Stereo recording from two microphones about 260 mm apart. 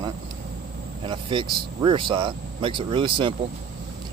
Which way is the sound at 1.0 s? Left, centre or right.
Centre.